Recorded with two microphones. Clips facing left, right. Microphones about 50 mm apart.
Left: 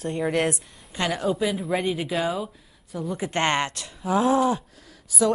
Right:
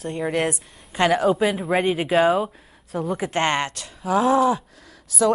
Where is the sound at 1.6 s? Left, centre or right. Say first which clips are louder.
Right 4 dB; right.